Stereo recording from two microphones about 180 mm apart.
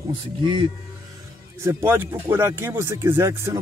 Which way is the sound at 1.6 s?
15° right (ahead or behind).